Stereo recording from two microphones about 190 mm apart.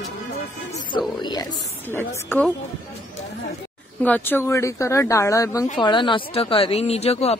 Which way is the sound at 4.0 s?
10° left (ahead or behind).